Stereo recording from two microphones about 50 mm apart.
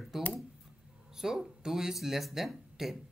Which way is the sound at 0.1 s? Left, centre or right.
Centre.